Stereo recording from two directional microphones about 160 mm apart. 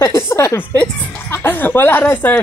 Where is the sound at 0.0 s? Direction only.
15° left (ahead or behind).